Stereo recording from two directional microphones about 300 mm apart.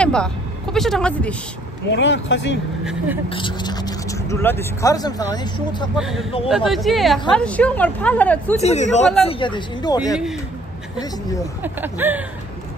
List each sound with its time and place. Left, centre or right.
0.0 s speech: centre
1.9 s speech: left
2.8 s a woman's voice: centre
3.3 s speech: centre
5.9 s a woman's voice: centre
8.5 s speech: left
11.6 s speech: centre